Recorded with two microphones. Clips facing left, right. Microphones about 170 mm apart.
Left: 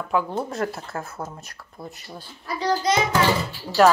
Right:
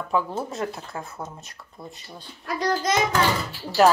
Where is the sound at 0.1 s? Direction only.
Centre (ahead or behind).